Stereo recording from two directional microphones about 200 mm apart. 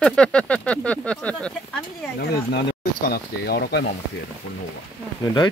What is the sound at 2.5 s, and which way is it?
Speech, 50° left (ahead or behind).